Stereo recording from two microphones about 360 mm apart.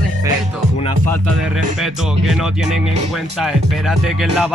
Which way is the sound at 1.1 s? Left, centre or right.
Centre.